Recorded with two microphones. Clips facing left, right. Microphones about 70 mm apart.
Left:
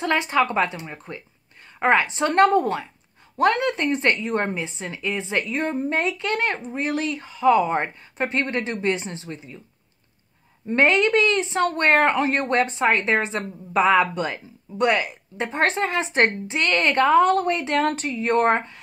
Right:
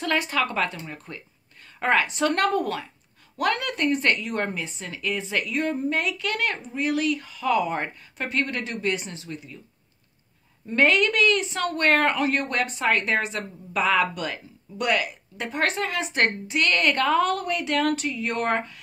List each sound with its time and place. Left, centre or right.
0.0 s a woman's voice: left
10.7 s a woman's voice: left